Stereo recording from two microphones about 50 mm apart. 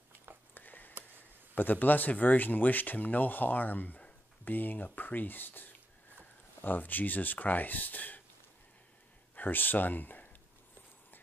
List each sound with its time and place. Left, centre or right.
0.6 s a sound: left
1.5 s speech: left
9.3 s speech: left